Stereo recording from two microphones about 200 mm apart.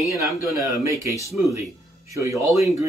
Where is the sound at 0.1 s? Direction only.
15° right (ahead or behind).